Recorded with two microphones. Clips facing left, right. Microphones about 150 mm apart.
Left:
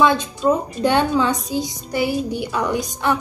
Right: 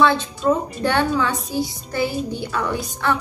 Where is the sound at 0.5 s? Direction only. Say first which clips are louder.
Left 2 dB; 15° left (ahead or behind).